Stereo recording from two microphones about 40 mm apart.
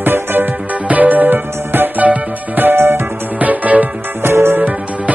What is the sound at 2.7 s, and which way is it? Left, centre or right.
Music, right.